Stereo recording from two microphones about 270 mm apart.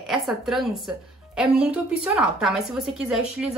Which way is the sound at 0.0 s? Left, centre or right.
Centre.